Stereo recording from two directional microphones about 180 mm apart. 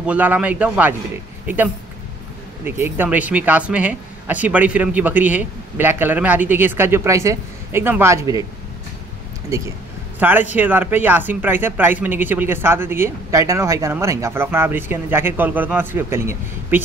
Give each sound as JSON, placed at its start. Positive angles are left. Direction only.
{"t": 0.0, "sound": "speech", "side_deg": -10}
{"t": 10.1, "sound": "speech", "side_deg": -10}